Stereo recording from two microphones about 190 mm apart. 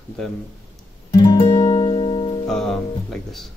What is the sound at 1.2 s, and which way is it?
Music, 20° left (ahead or behind).